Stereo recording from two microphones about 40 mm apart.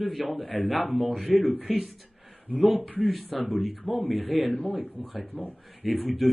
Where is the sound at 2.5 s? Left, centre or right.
Right.